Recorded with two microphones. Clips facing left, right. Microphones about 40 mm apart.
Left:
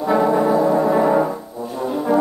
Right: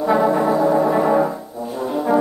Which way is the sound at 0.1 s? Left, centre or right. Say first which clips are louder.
Left 1 dB; centre.